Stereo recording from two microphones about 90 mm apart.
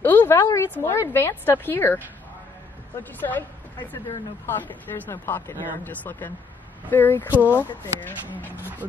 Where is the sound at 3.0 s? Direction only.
20° left (ahead or behind).